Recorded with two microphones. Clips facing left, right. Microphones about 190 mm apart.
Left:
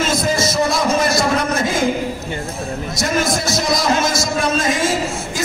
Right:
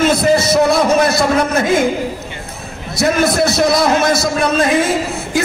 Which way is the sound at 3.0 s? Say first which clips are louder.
Right 7 dB; 60° right (ahead or behind).